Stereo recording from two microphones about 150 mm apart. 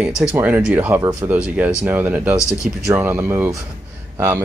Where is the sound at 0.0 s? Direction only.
5° right (ahead or behind).